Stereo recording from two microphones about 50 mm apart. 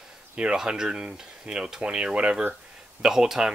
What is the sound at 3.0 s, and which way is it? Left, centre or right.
Speech, centre.